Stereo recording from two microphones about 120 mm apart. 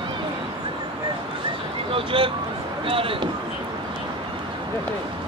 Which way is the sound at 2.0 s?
50° right (ahead or behind).